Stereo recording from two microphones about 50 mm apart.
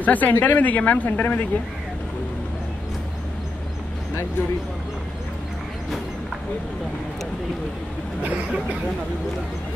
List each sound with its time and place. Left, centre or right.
0.0 s speech: left